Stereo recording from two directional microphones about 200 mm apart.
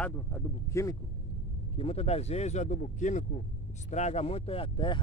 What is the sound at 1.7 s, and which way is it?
Speech, 30° left (ahead or behind).